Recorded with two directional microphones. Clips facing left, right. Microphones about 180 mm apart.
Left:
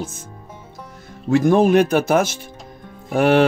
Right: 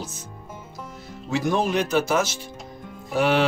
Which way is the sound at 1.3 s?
55° left (ahead or behind).